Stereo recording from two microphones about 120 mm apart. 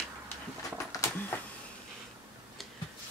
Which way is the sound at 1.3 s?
15° left (ahead or behind).